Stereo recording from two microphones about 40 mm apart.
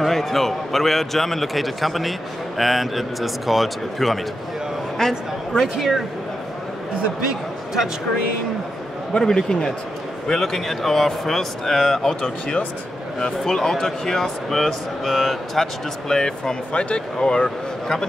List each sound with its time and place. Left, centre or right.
0.0 s a man's voice: centre
5.0 s speech: centre
5.6 s a man's voice: centre
9.2 s speech: centre
16.1 s speech: centre